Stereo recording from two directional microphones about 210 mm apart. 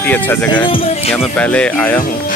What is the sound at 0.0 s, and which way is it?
Speech, 10° left (ahead or behind).